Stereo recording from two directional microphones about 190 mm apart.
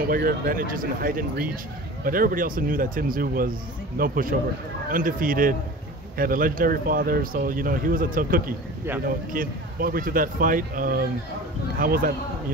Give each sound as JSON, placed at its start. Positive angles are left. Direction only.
{"t": 0.0, "sound": "speech", "side_deg": -50}